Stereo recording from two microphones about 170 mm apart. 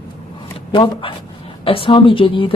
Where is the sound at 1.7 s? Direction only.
30° left (ahead or behind).